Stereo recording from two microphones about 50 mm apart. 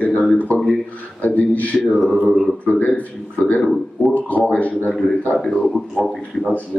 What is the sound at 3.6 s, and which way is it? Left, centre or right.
Speech, centre.